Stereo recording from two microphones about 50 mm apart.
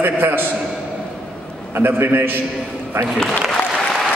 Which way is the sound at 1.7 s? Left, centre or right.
Right.